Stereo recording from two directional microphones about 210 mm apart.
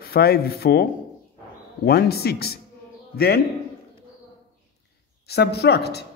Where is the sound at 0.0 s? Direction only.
45° left (ahead or behind).